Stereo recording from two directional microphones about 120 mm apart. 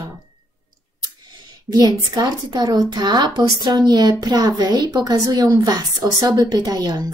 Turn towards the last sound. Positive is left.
turn(degrees=-30)  # may be behind; listen again after turning